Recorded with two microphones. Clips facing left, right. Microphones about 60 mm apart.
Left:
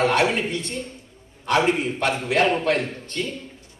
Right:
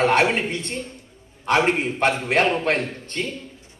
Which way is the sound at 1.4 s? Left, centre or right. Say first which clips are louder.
Right 1 dB; right.